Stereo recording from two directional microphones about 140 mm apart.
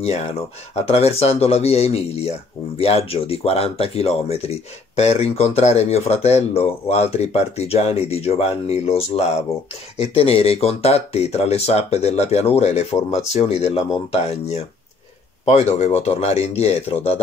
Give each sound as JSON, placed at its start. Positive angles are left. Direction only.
{"t": 0.0, "sound": "speech", "side_deg": 50}
{"t": 15.4, "sound": "speech", "side_deg": 50}